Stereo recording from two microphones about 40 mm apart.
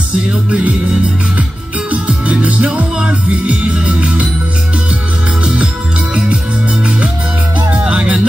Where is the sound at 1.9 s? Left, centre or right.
Right.